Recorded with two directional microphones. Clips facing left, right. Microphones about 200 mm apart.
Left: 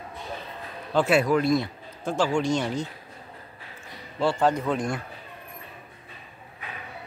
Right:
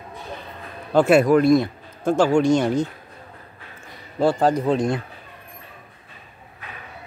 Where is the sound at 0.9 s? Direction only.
50° right (ahead or behind).